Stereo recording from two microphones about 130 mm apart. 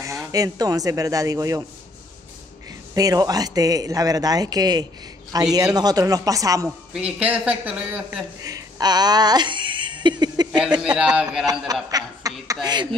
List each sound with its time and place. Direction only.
0.0 s speech: 25° right (ahead or behind)
2.9 s speech: 30° right (ahead or behind)
6.9 s a man's voice: 10° right (ahead or behind)
8.5 s a sound: 30° right (ahead or behind)
10.8 s a man's voice: 5° right (ahead or behind)
11.4 s chuckle: 30° right (ahead or behind)